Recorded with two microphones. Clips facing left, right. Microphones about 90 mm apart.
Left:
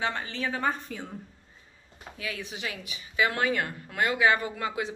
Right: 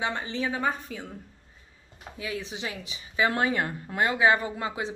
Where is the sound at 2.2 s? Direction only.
25° right (ahead or behind).